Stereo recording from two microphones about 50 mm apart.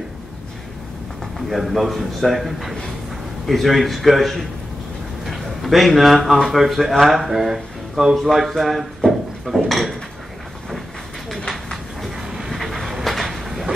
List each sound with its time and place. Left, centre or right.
1.5 s a man's voice: centre
11.2 s a sound: centre
12.3 s vehicle: centre